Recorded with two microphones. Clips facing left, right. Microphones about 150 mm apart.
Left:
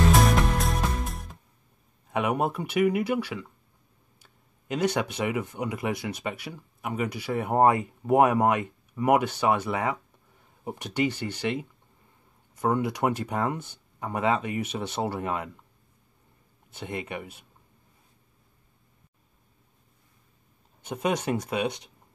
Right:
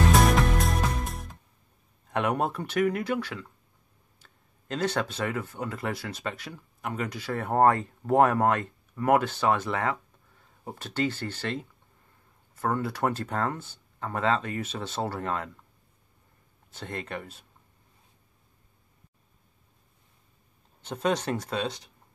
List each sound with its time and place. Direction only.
0.1 s music: centre (ahead or behind)
2.0 s speech: 5° left (ahead or behind)
16.7 s speech: 10° left (ahead or behind)
20.8 s speech: 10° left (ahead or behind)